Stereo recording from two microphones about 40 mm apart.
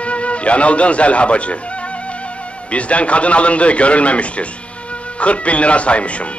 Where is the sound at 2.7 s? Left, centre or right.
Left.